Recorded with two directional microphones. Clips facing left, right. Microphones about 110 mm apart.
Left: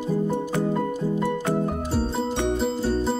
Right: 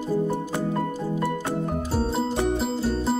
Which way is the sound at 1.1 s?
5° right (ahead or behind).